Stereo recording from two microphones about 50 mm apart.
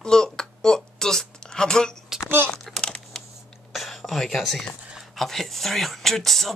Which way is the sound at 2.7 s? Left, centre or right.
Centre.